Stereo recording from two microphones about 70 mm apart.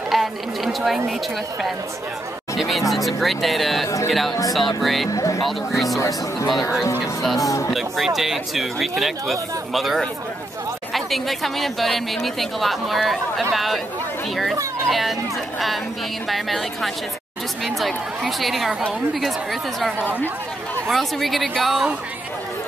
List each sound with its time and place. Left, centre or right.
0.1 s chatter: centre
2.5 s music: centre
2.9 s speech: centre
5.1 s speech: left
5.4 s speech: centre
5.9 s speech: left
8.2 s speech: centre
14.9 s speech: centre
16.3 s speech: centre
20.9 s speech: centre